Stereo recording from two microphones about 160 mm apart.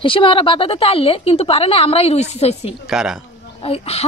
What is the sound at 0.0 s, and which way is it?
A woman's voice, 35° left (ahead or behind).